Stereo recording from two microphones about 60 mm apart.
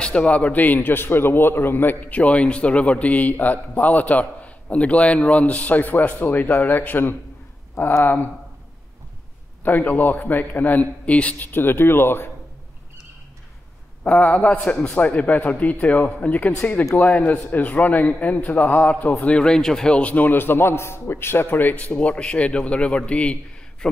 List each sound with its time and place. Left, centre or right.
0.0 s a man's voice: centre; by 8.3 s left
9.6 s a man's voice: left
14.0 s a man's voice: left
19.2 s speech: centre
20.0 s a man's voice: left
21.9 s a man's voice: centre